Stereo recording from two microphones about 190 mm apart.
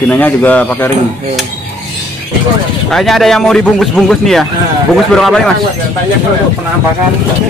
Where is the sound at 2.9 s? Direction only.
Centre (ahead or behind).